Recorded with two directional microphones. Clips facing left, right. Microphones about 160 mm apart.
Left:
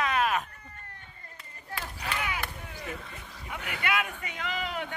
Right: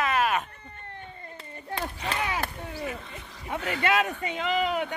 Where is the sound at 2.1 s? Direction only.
35° right (ahead or behind).